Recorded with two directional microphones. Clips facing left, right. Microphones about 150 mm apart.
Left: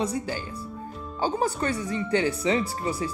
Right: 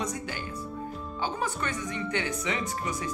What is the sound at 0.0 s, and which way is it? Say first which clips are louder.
A woman's voice: left 5 dB; 30° left (ahead or behind).